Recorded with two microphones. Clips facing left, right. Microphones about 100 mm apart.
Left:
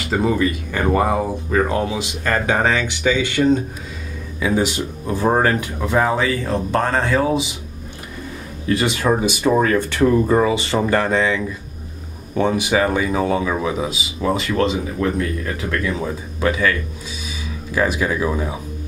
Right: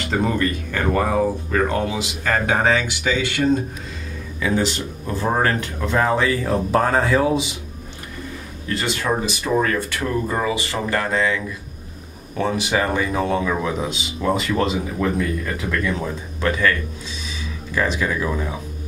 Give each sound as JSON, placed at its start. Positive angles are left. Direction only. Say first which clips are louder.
{"t": 0.0, "sound": "speech", "louder": "left 2 dB", "side_deg": 5}
{"t": 2.4, "sound": "speech", "louder": "even", "side_deg": -5}
{"t": 3.4, "sound": "speech", "louder": "left 3 dB", "side_deg": 25}
{"t": 4.4, "sound": "speech", "louder": "left 2 dB", "side_deg": 10}
{"t": 6.4, "sound": "speech", "louder": "right 1 dB", "side_deg": -5}
{"t": 9.0, "sound": "speech", "louder": "left 6 dB", "side_deg": 25}
{"t": 10.2, "sound": "speech", "louder": "left 6 dB", "side_deg": 35}
{"t": 16.3, "sound": "speech", "louder": "left 1 dB", "side_deg": 10}
{"t": 17.7, "sound": "speech", "louder": "left 2 dB", "side_deg": 10}